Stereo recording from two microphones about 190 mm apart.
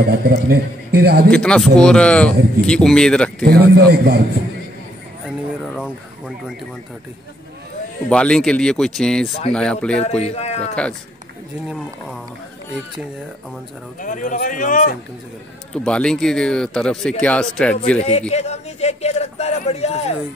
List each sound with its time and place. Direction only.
0.0 s a man's voice: 55° right (ahead or behind)
1.3 s speech: 5° left (ahead or behind)
3.4 s a man's voice: 55° right (ahead or behind)
5.8 s fowl: centre (ahead or behind)
8.1 s speech: 5° left (ahead or behind)
10.2 s a man's voice: 35° left (ahead or behind)
11.6 s speech: centre (ahead or behind)
14.0 s speech: 45° left (ahead or behind)
15.7 s speech: 5° left (ahead or behind)
18.3 s a man's voice: 35° left (ahead or behind)